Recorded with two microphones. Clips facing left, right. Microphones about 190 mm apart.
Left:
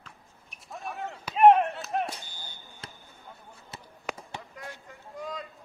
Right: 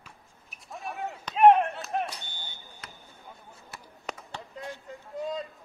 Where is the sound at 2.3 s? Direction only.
25° right (ahead or behind).